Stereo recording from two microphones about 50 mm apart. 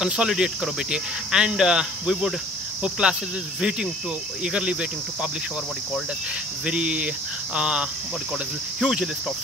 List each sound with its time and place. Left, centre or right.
0.0 s cricket: centre
0.3 s speech: centre
2.8 s cricket: centre
4.4 s cricket: centre
6.6 s cricket: right
8.8 s speech: centre